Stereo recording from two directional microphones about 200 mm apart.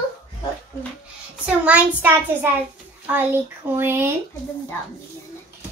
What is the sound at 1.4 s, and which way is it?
A child's voice, 5° right (ahead or behind).